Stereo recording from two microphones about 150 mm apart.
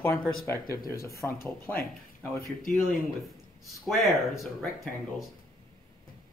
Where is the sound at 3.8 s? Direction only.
Centre (ahead or behind).